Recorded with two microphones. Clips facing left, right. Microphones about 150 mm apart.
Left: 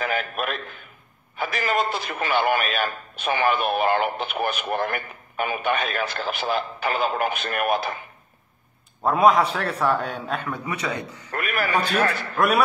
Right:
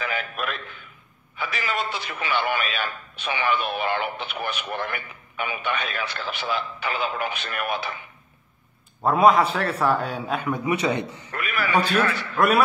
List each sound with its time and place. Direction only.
0.0 s a man's voice: 45° left (ahead or behind)
9.0 s a man's voice: centre (ahead or behind)
10.7 s a man's voice: 25° right (ahead or behind)
11.3 s a man's voice: 45° left (ahead or behind)
12.4 s a man's voice: centre (ahead or behind)